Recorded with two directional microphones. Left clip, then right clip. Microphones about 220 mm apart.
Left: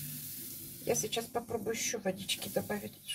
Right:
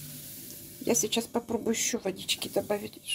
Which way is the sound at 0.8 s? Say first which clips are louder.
Right 5 dB; 40° right (ahead or behind).